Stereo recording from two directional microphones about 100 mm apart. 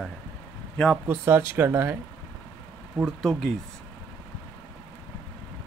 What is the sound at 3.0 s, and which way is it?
Speech, centre (ahead or behind).